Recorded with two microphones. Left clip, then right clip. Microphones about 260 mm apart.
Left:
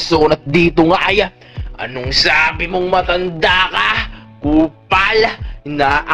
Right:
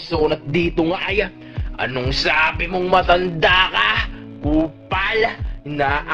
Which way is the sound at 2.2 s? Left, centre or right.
Centre.